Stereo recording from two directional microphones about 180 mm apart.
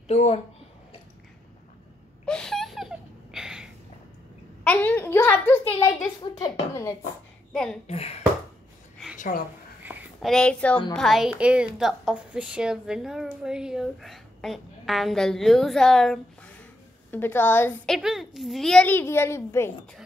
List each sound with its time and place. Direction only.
0.1 s a child's voice: 35° left (ahead or behind)
2.2 s a sound: 5° left (ahead or behind)
4.6 s a sound: 10° left (ahead or behind)
6.4 s a woman's voice: 15° left (ahead or behind)
7.5 s a woman's voice: 5° left (ahead or behind)
7.8 s a child's voice: 35° left (ahead or behind)
8.9 s a sound: centre (ahead or behind)
10.3 s a woman's voice: 5° left (ahead or behind)
17.9 s a woman's voice: centre (ahead or behind); by 19.7 s 15° left (ahead or behind)